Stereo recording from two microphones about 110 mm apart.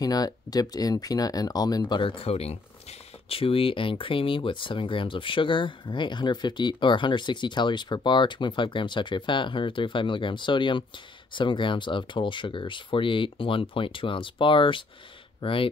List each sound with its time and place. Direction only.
0.0 s speech: 35° left (ahead or behind); by 15.7 s 55° left (ahead or behind)